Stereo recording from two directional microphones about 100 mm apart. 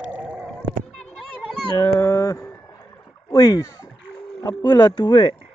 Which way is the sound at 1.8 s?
35° left (ahead or behind).